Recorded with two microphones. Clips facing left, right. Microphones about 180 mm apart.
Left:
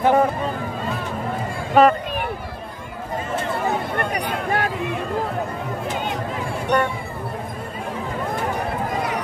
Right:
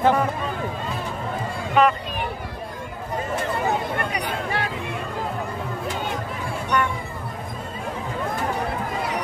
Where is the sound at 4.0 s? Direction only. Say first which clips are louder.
Left 3 dB; 45° left (ahead or behind).